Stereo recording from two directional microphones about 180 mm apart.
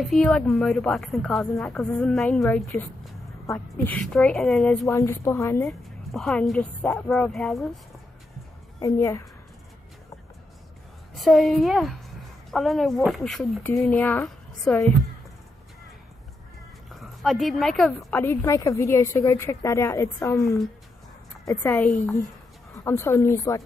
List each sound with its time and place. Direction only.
0.0 s a woman's voice: centre (ahead or behind)
4.8 s speech: 15° left (ahead or behind)
5.7 s a woman's voice: centre (ahead or behind)
8.7 s a woman's voice: 20° left (ahead or behind)
11.1 s a woman's voice: centre (ahead or behind)
16.9 s speech: centre (ahead or behind)
18.2 s speech: 15° left (ahead or behind)